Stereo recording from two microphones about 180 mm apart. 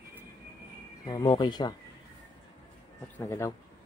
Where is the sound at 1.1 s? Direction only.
25° left (ahead or behind).